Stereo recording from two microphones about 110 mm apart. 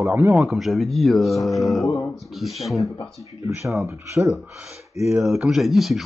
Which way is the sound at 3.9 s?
25° right (ahead or behind).